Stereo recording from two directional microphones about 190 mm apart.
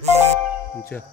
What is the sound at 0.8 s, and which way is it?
Speech, 10° left (ahead or behind).